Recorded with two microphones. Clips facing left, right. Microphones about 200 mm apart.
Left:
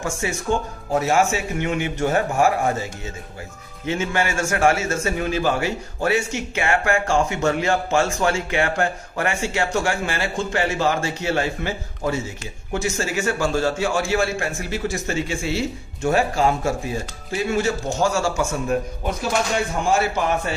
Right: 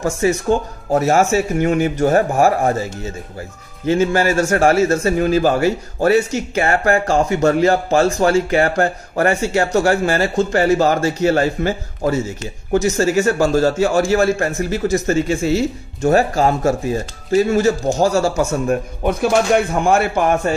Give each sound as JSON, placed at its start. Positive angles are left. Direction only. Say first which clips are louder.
{"t": 0.0, "sound": "a man's voice", "louder": "right 8 dB", "side_deg": -35}
{"t": 19.0, "sound": "speech", "louder": "right 10 dB", "side_deg": -55}